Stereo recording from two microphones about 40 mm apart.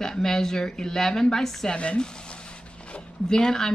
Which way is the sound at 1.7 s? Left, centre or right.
Left.